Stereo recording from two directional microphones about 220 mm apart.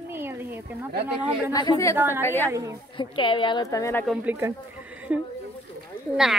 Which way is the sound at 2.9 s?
20° left (ahead or behind).